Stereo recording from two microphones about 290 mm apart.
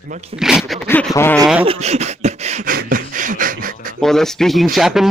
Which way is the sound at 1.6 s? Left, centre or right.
Right.